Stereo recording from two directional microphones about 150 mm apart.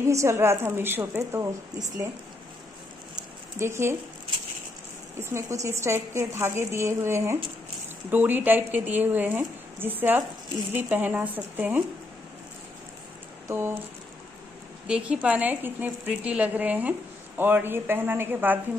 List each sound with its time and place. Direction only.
0.0 s a woman's voice: 20° right (ahead or behind)
3.5 s a woman's voice: 15° right (ahead or behind)
5.2 s a woman's voice: 20° right (ahead or behind)
13.5 s a woman's voice: 15° right (ahead or behind)
14.9 s a woman's voice: 5° right (ahead or behind)